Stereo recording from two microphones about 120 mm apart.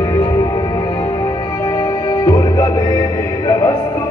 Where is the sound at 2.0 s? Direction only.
30° left (ahead or behind).